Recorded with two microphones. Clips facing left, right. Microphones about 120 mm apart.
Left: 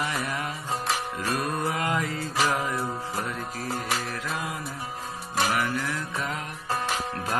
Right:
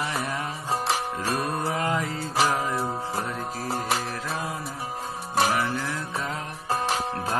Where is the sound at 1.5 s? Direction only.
30° right (ahead or behind).